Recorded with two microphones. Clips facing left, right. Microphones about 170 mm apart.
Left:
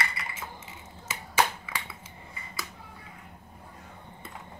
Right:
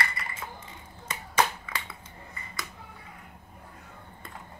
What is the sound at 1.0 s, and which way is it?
Finger snapping, 5° left (ahead or behind).